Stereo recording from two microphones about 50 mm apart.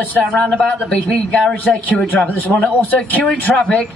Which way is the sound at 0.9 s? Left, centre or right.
Left.